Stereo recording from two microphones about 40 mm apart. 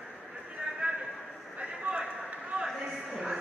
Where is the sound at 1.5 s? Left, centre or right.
Right.